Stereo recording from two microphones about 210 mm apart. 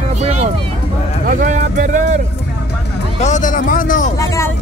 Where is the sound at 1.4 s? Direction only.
40° right (ahead or behind).